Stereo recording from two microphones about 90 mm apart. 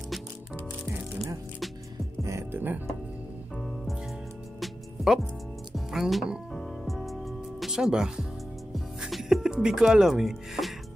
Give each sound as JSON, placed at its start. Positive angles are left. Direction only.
{"t": 2.5, "sound": "music", "side_deg": -20}
{"t": 4.6, "sound": "music", "side_deg": -5}
{"t": 5.9, "sound": "speech", "side_deg": 0}
{"t": 6.5, "sound": "music", "side_deg": 0}